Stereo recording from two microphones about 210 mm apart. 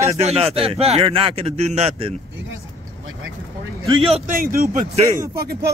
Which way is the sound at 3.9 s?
25° right (ahead or behind).